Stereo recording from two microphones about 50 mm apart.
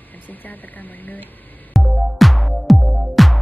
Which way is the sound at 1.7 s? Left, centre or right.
Centre.